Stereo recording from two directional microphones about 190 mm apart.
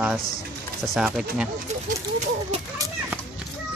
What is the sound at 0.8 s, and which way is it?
Speech, centre (ahead or behind).